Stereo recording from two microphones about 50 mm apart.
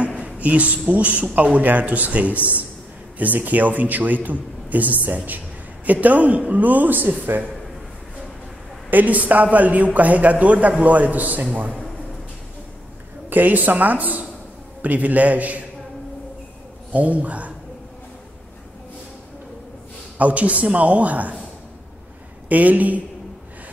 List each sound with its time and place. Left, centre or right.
0.1 s a man's voice: right
7.3 s a man's voice: right
8.9 s a man's voice: right
13.3 s a man's voice: right
16.9 s speech: right
20.2 s speech: right
22.5 s a man's voice: right